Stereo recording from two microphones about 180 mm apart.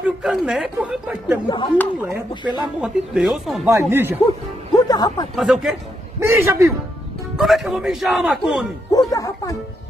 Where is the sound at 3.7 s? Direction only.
15° right (ahead or behind).